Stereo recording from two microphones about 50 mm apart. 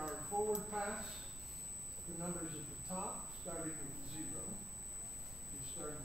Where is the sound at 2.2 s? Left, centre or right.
Centre.